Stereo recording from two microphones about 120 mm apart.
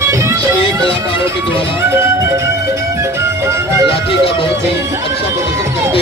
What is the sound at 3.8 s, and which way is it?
Speech, 50° left (ahead or behind).